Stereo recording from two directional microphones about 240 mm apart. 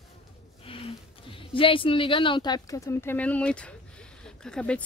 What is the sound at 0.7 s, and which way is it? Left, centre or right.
Speech, left.